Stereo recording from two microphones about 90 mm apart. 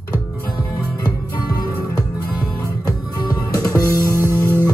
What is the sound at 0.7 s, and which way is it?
Music, 35° left (ahead or behind).